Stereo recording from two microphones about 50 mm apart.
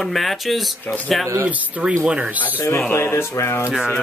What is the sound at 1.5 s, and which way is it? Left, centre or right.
Speech, right.